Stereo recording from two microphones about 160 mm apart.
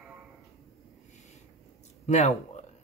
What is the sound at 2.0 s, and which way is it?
Speech, 45° left (ahead or behind).